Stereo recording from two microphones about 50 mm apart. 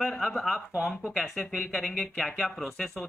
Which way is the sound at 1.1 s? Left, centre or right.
Centre.